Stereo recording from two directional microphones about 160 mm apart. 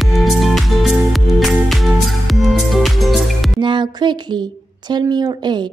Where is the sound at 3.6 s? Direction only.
30° right (ahead or behind).